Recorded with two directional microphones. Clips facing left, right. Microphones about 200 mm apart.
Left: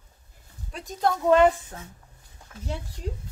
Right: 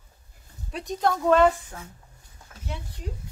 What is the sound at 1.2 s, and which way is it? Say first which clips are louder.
Speech: left 1 dB; 15° left (ahead or behind).